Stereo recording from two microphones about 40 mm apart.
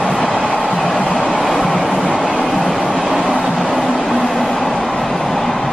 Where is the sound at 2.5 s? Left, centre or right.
Centre.